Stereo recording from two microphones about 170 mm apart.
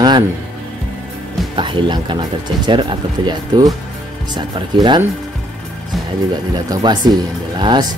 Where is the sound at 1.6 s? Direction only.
30° right (ahead or behind).